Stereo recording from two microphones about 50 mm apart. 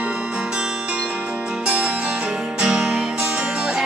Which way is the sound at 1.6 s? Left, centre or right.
Right.